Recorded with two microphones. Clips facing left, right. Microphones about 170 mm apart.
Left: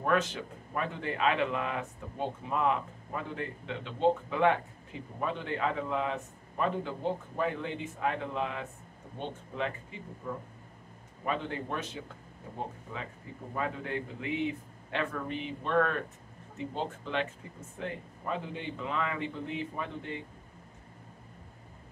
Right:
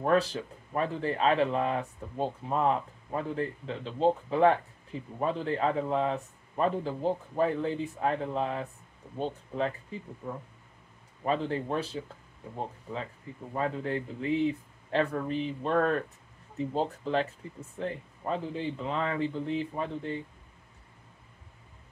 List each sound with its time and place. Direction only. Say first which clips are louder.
0.0 s speech: right 3 dB; 35° right (ahead or behind)
11.2 s speech: right 5 dB; 35° right (ahead or behind)
13.6 s speech: right 4 dB; 35° right (ahead or behind)